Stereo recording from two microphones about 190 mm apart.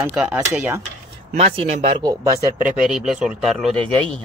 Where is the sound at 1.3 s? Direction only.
35° right (ahead or behind).